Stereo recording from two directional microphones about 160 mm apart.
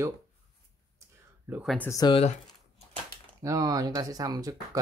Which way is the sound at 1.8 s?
20° left (ahead or behind).